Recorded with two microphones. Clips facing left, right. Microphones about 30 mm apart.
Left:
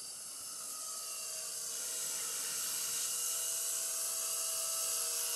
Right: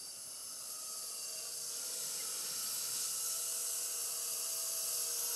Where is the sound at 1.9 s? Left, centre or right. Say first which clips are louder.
Left 3 dB; left.